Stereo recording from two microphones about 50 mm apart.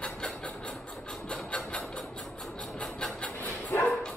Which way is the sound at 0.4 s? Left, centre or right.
Left.